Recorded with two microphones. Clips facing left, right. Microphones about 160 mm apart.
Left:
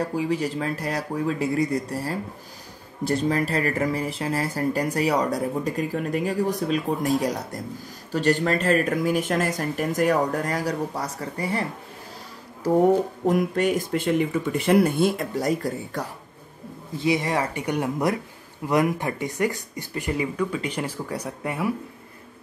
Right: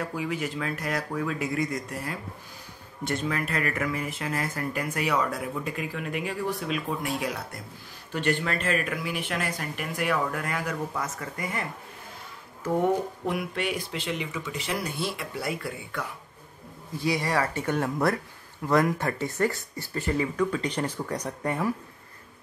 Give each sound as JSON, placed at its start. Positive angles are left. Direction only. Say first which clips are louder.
{"t": 0.0, "sound": "speech", "louder": "left 6 dB", "side_deg": 35}
{"t": 12.6, "sound": "speech", "louder": "left 6 dB", "side_deg": 40}
{"t": 17.0, "sound": "speech", "louder": "left 3 dB", "side_deg": 20}